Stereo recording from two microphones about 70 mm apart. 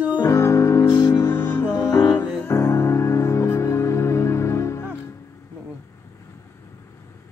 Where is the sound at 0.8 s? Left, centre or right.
Left.